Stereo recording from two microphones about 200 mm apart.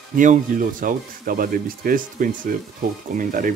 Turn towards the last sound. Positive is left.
turn(degrees=-45)  # may be behind; listen again after turning